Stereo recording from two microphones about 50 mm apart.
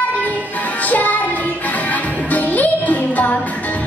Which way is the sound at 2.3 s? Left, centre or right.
Left.